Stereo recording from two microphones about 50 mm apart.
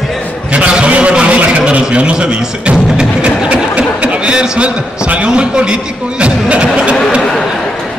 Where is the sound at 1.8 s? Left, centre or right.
Right.